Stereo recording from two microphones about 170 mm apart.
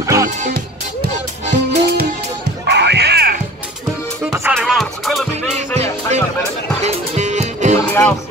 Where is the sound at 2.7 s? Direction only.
90° right; by 3.4 s 65° right (ahead or behind).